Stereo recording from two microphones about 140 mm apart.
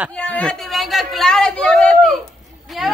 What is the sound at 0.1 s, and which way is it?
A man's voice, 10° left (ahead or behind).